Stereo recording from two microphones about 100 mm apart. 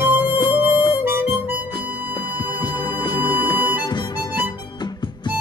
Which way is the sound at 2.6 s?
45° left (ahead or behind).